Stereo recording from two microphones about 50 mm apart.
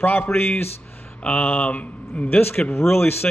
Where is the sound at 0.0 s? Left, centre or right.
Left.